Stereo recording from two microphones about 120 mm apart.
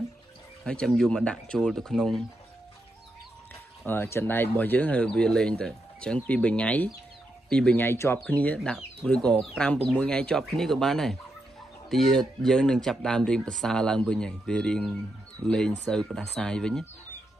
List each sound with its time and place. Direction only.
0.7 s speech: 5° left (ahead or behind)
3.8 s speech: 15° left (ahead or behind)